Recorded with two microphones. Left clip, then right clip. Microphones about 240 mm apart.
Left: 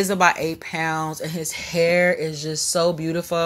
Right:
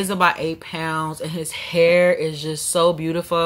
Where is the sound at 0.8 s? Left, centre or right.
Right.